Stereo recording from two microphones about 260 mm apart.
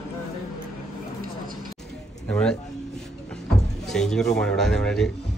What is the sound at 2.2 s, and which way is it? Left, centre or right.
Speech, centre.